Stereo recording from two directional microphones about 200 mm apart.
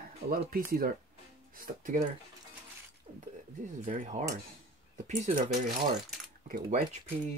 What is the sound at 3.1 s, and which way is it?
Speech, 30° right (ahead or behind).